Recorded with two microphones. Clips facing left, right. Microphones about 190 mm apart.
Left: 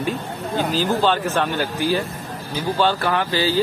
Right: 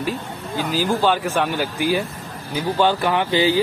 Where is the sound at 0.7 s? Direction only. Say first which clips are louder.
Right 2 dB; 10° right (ahead or behind).